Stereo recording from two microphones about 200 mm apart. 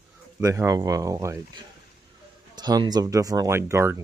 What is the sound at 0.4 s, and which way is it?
Speech, 15° right (ahead or behind).